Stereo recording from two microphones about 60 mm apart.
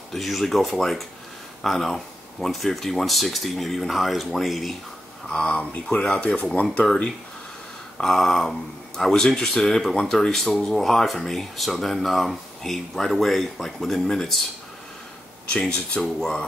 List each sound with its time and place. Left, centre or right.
0.1 s speech: centre
5.3 s speech: centre
8.0 s speech: centre
16.0 s speech: centre